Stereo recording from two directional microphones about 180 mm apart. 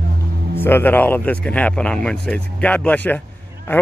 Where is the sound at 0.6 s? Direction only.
10° left (ahead or behind).